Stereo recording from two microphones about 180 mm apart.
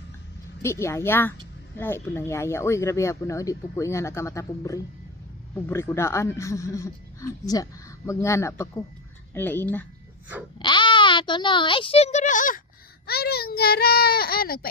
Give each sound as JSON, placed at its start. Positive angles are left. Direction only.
{"t": 0.6, "sound": "speech", "side_deg": 15}
{"t": 10.6, "sound": "a child's voice", "side_deg": 25}